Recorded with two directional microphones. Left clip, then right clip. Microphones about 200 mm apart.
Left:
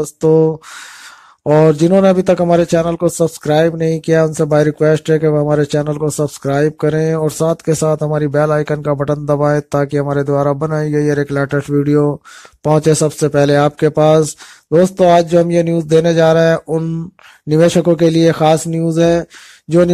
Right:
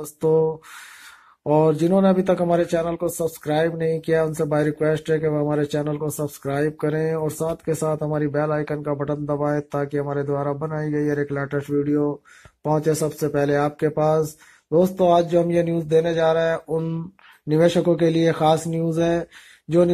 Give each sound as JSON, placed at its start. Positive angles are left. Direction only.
{"t": 0.2, "sound": "speech", "side_deg": 35}